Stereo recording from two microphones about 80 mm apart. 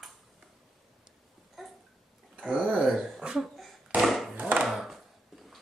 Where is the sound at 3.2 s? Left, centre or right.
Centre.